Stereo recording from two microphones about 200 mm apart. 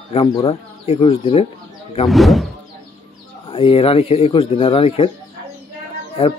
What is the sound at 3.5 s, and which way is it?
Speech, 25° left (ahead or behind).